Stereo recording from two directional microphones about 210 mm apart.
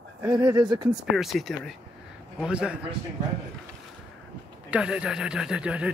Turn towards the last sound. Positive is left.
turn(degrees=-5)  # may be behind; listen again after turning